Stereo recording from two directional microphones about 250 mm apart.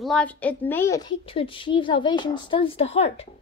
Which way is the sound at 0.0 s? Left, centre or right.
Centre.